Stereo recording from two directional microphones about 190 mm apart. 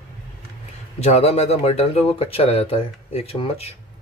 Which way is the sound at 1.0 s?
35° left (ahead or behind).